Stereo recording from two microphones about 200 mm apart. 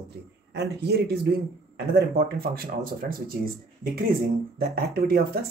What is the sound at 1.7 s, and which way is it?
Speech, 55° right (ahead or behind).